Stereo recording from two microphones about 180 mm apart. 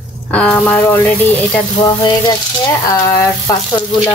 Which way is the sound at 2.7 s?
15° left (ahead or behind).